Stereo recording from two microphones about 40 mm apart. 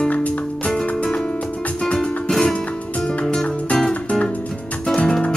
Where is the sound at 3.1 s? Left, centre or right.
Left.